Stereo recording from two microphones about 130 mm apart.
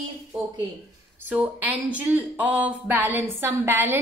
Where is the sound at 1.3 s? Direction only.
10° right (ahead or behind).